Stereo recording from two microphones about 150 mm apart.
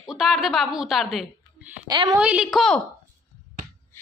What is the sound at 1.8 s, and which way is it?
Speech, 25° right (ahead or behind).